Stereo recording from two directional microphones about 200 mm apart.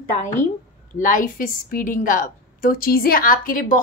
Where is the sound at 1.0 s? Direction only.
40° left (ahead or behind).